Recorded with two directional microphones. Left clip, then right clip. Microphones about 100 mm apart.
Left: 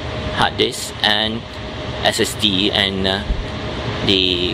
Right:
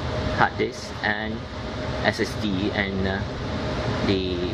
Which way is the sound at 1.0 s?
15° left (ahead or behind).